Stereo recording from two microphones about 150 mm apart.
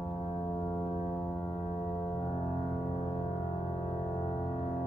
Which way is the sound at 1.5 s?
40° left (ahead or behind).